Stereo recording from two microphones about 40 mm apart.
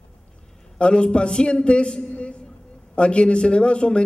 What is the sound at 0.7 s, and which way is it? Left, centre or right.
A man's voice, left.